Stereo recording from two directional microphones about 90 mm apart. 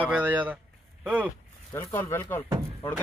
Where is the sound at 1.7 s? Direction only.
30° left (ahead or behind).